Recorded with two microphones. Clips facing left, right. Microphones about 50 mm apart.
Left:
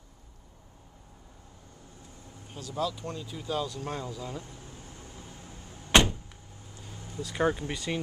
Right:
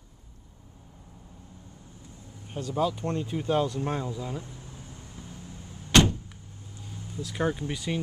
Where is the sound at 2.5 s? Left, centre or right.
Right; by 4.4 s centre.